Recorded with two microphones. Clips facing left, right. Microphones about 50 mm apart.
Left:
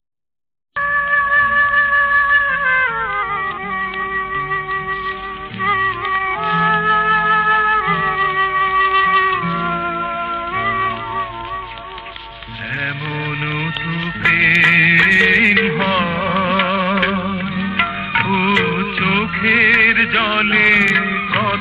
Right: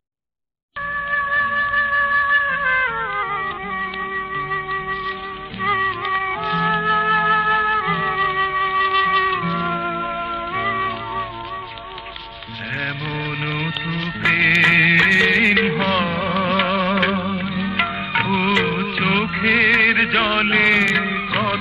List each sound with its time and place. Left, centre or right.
1.0 s music: centre
13.5 s music: centre
15.9 s music: centre